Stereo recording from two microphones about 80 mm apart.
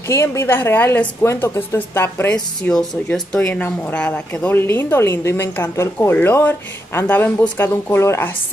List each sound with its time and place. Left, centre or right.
0.1 s a woman's voice: left
2.3 s speech: centre; by 8.3 s left